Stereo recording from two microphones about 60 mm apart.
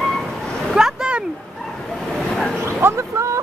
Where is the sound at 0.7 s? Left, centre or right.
Centre.